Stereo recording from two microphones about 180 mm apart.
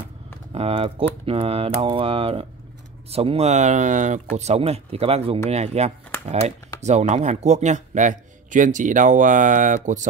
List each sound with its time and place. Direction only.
0.5 s speech: 30° right (ahead or behind)